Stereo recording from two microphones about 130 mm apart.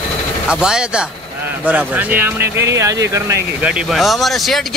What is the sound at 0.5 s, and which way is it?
Speech, 5° right (ahead or behind).